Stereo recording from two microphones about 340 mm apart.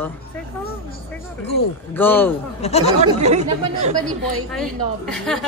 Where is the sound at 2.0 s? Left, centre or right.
Centre.